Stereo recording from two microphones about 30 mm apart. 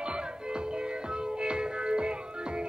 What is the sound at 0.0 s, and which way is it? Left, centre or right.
Music, right.